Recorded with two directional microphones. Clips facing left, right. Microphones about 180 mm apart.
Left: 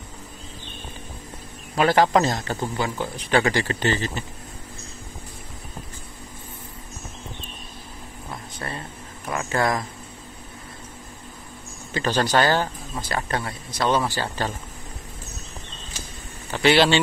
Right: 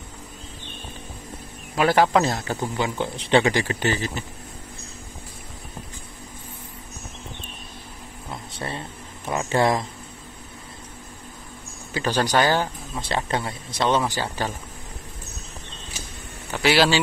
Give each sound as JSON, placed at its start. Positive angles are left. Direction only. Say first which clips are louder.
{"t": 1.8, "sound": "speech", "louder": "even", "side_deg": -10}
{"t": 3.0, "sound": "speech", "louder": "right 3 dB", "side_deg": -25}
{"t": 8.5, "sound": "a sound", "louder": "right 3 dB", "side_deg": -25}
{"t": 11.9, "sound": "speech", "louder": "even", "side_deg": -10}
{"t": 13.0, "sound": "speech", "louder": "right 2 dB", "side_deg": -25}
{"t": 16.6, "sound": "a man's voice", "louder": "left 2 dB", "side_deg": -5}